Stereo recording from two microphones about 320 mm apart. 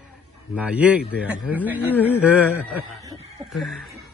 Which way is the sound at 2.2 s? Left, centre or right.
Centre.